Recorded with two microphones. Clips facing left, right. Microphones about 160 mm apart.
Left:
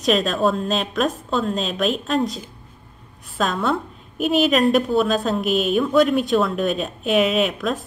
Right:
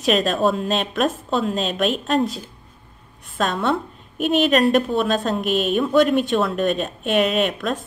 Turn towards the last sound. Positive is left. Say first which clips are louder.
# even
turn(degrees=0)  # may be behind; listen again after turning